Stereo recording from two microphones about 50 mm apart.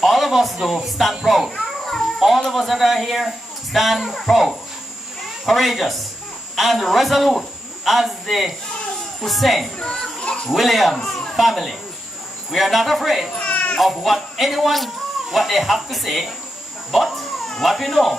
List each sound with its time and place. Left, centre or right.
0.0 s a man's voice: centre
1.6 s children playing: centre
2.5 s a man's voice: centre
9.8 s children playing: centre
10.5 s speech: centre
11.0 s a sound: centre
11.3 s speech: centre
13.4 s baby cry: left
13.7 s speech: centre
16.9 s a sound: centre